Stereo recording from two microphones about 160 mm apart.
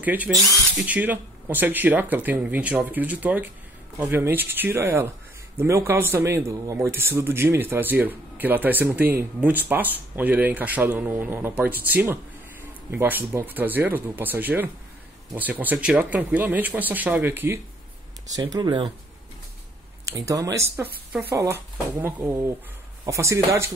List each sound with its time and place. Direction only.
0.0 s speech: 10° right (ahead or behind)
18.3 s speech: 25° right (ahead or behind)
20.1 s speech: 20° right (ahead or behind)